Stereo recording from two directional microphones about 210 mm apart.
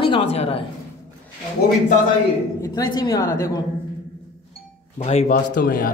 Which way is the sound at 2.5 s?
15° left (ahead or behind).